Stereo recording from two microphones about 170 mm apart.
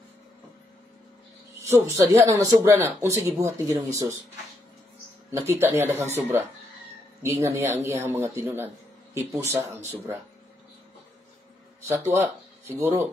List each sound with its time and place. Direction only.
1.6 s a sound: 15° right (ahead or behind)
2.0 s a man's voice: 20° right (ahead or behind)
5.3 s a man's voice: 15° right (ahead or behind)
7.2 s a man's voice: 15° right (ahead or behind)
11.9 s speech: 15° right (ahead or behind)